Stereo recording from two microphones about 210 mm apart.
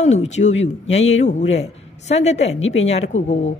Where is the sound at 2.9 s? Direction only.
30° left (ahead or behind).